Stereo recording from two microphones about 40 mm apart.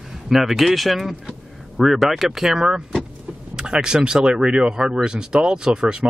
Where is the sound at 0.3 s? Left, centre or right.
Centre.